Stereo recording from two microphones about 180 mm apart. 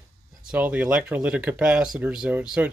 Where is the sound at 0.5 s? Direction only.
10° right (ahead or behind).